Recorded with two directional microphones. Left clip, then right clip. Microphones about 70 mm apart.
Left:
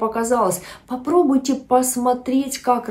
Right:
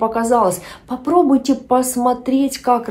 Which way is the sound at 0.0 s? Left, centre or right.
Right.